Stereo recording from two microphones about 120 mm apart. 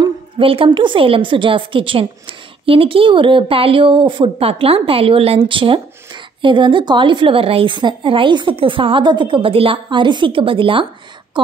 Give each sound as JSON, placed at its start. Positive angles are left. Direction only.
{"t": 0.4, "sound": "a woman's voice", "side_deg": -50}